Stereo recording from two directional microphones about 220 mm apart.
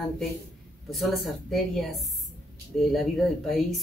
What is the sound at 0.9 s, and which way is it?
Speech, centre (ahead or behind).